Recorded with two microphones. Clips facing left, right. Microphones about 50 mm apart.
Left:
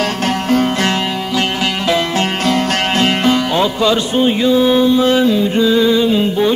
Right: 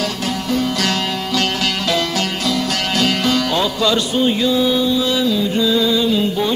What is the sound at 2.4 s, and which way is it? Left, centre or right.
Music, left.